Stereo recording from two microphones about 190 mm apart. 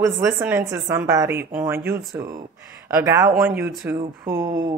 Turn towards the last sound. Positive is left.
turn(degrees=-15)  # may be behind; listen again after turning